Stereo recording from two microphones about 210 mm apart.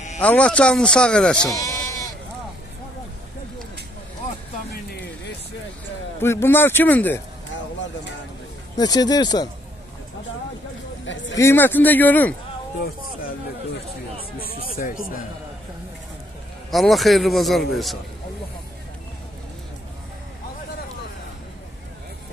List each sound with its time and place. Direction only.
0.2 s speech: 5° left (ahead or behind)
1.5 s bleat: 15° left (ahead or behind)
6.2 s speech: 10° left (ahead or behind)
8.7 s speech: 20° left (ahead or behind)
11.3 s speech: 10° left (ahead or behind)
14.8 s speech: 45° left (ahead or behind)
16.7 s speech: centre (ahead or behind)